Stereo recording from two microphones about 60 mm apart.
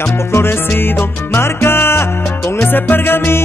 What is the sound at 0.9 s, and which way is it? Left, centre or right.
Salsa music, left.